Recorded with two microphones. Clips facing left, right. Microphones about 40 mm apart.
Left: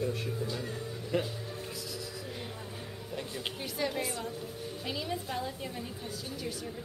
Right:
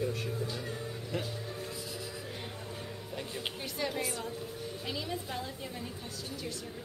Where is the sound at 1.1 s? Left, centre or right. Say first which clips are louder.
Left 6 dB; centre.